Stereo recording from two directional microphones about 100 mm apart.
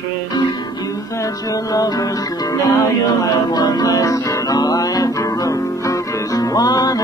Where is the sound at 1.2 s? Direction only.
35° left (ahead or behind).